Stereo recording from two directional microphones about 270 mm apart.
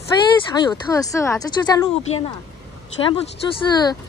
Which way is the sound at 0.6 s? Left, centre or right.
Centre.